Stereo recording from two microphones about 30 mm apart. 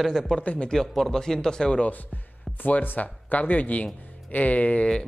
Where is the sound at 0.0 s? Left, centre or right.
Centre; by 1.8 s left.